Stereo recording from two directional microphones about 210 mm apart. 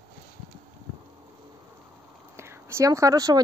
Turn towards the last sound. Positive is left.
turn(degrees=-15)  # may be behind; listen again after turning